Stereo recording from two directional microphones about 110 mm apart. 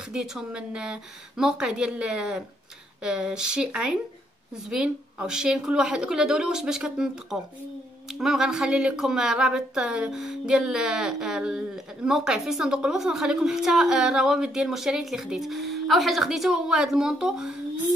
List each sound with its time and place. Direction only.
0.1 s a woman's voice: 5° right (ahead or behind)